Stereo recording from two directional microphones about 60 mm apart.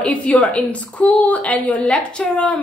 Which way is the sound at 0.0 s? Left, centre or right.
Left.